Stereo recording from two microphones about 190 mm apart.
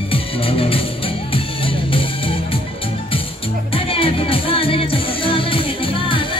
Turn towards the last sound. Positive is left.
turn(degrees=25)  # may be behind; listen again after turning